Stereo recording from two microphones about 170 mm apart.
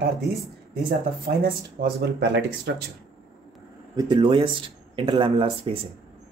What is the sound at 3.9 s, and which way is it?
Speech, 30° right (ahead or behind).